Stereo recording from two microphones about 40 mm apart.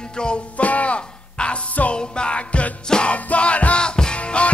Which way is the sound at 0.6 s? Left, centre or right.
Left.